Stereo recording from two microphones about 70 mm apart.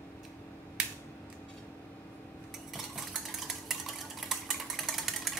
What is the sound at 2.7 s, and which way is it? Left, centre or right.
Stir, centre.